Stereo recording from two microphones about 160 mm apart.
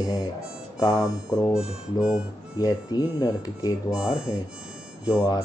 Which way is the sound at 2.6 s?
20° left (ahead or behind).